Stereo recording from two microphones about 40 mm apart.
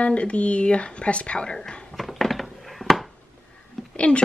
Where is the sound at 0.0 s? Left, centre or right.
Left.